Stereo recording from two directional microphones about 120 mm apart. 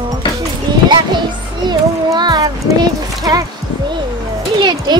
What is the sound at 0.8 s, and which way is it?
Children playing, 40° right (ahead or behind).